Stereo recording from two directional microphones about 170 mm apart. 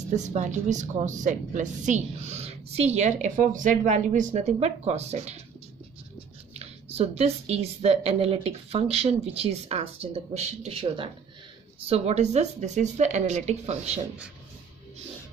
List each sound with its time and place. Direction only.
0.1 s a woman's voice: 45° right (ahead or behind)
6.5 s a woman's voice: 40° right (ahead or behind)